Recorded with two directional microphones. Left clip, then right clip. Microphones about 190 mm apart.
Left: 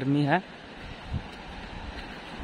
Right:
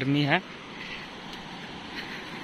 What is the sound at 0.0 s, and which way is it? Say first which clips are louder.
Speech: even; 25° left (ahead or behind).